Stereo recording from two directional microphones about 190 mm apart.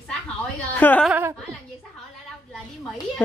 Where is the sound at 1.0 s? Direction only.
10° right (ahead or behind).